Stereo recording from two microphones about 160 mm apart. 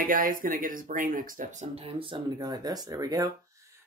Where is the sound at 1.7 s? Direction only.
35° right (ahead or behind).